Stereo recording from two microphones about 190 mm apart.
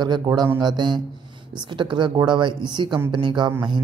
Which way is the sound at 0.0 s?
20° right (ahead or behind).